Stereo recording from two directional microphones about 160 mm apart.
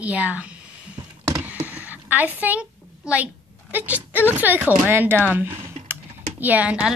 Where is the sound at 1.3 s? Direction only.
10° right (ahead or behind).